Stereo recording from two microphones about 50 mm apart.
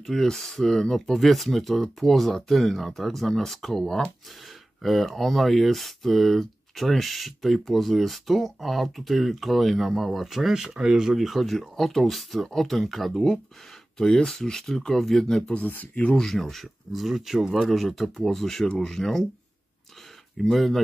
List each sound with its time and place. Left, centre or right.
0.0 s speech: centre
11.2 s speech: centre
15.4 s speech: left
16.2 s speech: centre
20.4 s speech: centre